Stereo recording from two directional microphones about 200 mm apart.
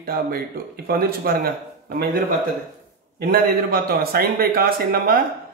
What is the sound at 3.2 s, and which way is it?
Speech, 50° right (ahead or behind).